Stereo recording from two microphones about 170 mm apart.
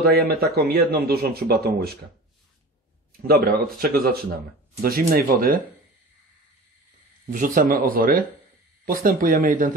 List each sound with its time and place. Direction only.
0.0 s speech: 65° right (ahead or behind)
3.1 s speech: 65° right (ahead or behind)
7.2 s speech: 50° right (ahead or behind)